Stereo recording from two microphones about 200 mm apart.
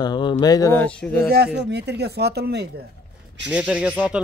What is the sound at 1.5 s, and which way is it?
Speech, 55° right (ahead or behind).